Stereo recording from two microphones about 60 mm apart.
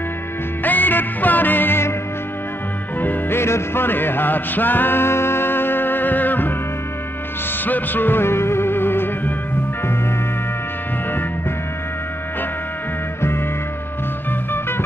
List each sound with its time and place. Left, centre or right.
0.7 s music: left
3.0 s music: left
7.6 s music: left